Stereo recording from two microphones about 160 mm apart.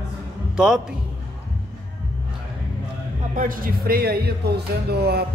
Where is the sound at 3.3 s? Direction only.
60° right (ahead or behind).